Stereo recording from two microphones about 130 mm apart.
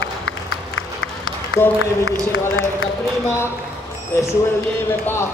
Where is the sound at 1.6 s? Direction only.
20° left (ahead or behind).